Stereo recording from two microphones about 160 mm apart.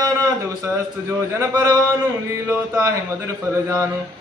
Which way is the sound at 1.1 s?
20° right (ahead or behind).